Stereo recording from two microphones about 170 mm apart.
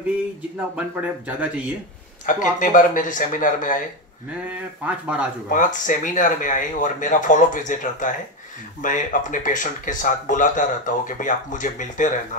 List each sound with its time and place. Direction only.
0.7 s speech: 5° right (ahead or behind)
2.2 s speech: 50° left (ahead or behind)
4.5 s speech: 10° right (ahead or behind)
5.5 s speech: 50° left (ahead or behind)